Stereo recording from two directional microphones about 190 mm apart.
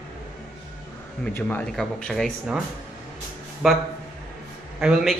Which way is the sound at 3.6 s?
Centre (ahead or behind).